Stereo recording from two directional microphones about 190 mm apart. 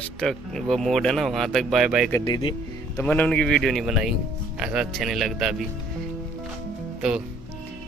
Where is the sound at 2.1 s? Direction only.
15° left (ahead or behind).